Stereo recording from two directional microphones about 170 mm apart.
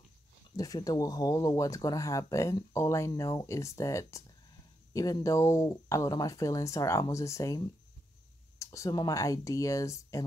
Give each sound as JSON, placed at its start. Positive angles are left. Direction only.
{"t": 0.6, "sound": "speech", "side_deg": 20}